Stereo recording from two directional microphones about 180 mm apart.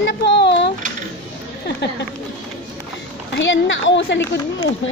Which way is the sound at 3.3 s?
90° left.